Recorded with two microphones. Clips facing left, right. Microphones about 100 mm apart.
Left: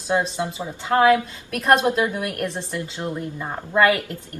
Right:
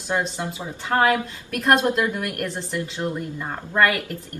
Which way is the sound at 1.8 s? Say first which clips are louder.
Left 1 dB; 20° left (ahead or behind).